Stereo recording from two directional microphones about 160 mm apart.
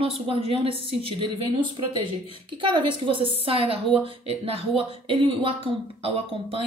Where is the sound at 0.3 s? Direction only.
35° right (ahead or behind).